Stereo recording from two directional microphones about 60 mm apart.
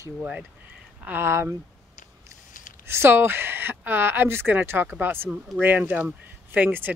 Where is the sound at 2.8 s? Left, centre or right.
Right.